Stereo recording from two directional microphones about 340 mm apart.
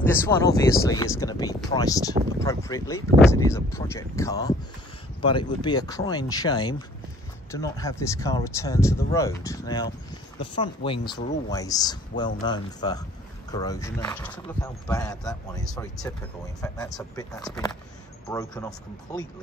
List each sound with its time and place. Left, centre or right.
0.0 s speech: centre